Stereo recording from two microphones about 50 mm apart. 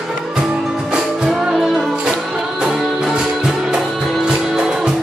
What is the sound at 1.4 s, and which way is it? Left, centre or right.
Music, centre.